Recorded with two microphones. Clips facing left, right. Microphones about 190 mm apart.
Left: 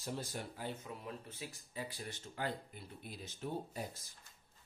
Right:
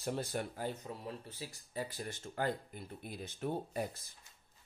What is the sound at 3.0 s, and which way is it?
Speech, 60° right (ahead or behind).